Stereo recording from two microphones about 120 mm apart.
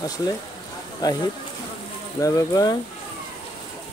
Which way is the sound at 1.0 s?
35° left (ahead or behind).